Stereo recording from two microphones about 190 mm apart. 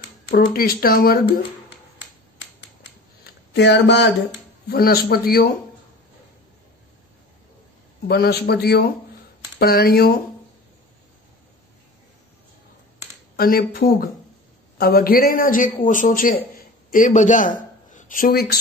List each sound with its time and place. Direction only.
0.3 s a man's voice: 50° left (ahead or behind)
3.5 s a man's voice: 65° left (ahead or behind)
4.6 s a man's voice: 55° left (ahead or behind)
8.1 s a man's voice: 55° left (ahead or behind)
13.4 s a man's voice: 50° left (ahead or behind)